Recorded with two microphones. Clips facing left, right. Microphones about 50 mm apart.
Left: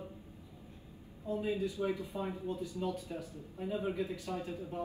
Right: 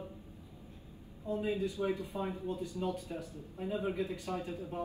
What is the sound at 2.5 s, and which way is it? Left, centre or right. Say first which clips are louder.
Speech: right 1 dB; right.